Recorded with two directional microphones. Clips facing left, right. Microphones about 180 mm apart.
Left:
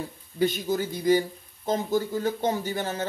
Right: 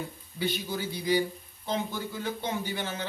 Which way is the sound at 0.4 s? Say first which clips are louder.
Left 7 dB; 45° left (ahead or behind).